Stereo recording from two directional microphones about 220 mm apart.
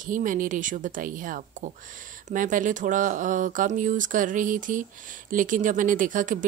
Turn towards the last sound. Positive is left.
turn(degrees=-35)  # may be behind; listen again after turning